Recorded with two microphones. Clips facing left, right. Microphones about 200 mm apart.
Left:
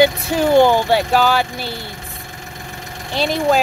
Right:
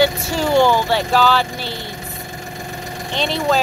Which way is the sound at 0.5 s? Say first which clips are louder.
Left 2 dB; 15° left (ahead or behind).